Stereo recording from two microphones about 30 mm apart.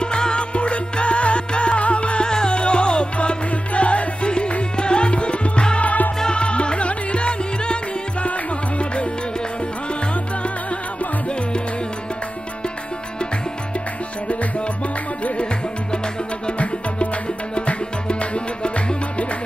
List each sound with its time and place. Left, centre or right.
0.0 s music: left
2.2 s music: left
5.8 s music: left
6.3 s music: left
16.5 s music: left